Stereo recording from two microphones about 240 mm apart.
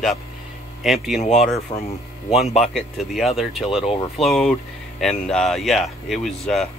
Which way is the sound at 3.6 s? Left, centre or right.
Left.